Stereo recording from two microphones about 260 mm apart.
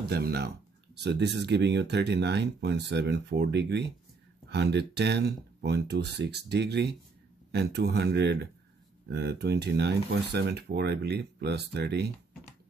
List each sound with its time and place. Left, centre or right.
0.1 s speech: right